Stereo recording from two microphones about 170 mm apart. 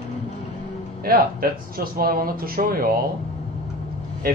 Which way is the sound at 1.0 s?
60° right (ahead or behind).